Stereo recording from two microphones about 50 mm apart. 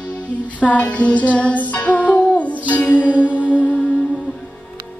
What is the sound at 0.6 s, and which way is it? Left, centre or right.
Music, left.